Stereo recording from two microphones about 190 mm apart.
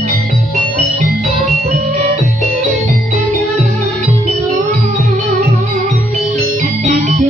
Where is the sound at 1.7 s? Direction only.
35° right (ahead or behind).